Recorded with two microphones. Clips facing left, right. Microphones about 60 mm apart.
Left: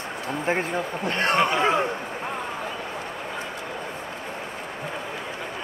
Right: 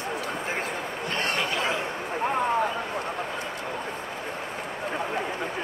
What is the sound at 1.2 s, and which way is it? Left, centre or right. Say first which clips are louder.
Speech: left 7 dB; left.